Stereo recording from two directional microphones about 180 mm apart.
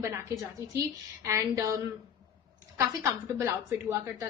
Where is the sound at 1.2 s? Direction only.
15° right (ahead or behind).